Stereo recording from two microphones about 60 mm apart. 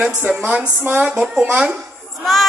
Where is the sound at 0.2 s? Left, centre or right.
Right.